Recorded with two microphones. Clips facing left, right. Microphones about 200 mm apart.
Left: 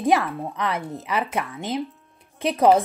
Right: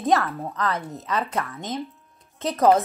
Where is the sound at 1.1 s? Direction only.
5° left (ahead or behind).